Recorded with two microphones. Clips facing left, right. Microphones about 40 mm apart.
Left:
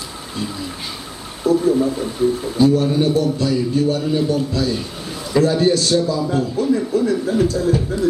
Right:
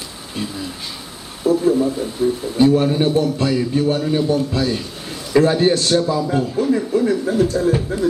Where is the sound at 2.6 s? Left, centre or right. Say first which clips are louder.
Right 1 dB; right.